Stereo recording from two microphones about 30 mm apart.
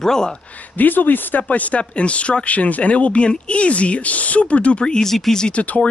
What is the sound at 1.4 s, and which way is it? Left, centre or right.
Speech, left.